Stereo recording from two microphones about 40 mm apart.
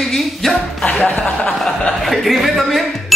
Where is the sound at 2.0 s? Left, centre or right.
Centre.